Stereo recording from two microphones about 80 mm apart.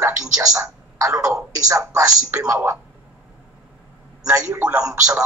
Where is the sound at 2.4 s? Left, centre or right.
Right.